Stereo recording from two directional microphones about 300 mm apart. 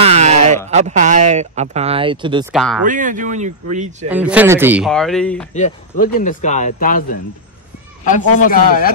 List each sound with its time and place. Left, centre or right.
0.0 s a sound: right
0.7 s speech: right
2.5 s speech: centre
2.8 s speech: right
4.1 s speech: centre
5.5 s speech: left